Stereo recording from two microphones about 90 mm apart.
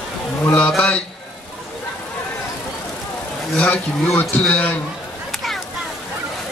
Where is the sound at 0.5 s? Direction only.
10° left (ahead or behind).